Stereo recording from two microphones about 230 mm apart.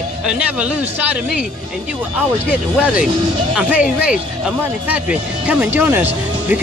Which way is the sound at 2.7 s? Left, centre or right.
Centre.